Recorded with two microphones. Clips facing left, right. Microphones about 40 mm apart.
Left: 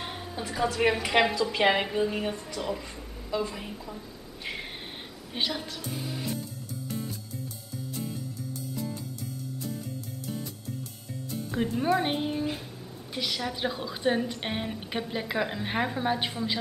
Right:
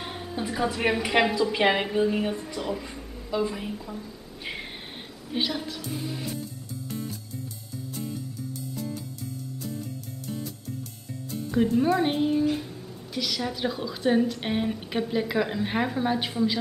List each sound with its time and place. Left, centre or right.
0.0 s a woman's voice: centre
5.3 s a woman's voice: centre
6.9 s music: centre
11.2 s a woman's voice: centre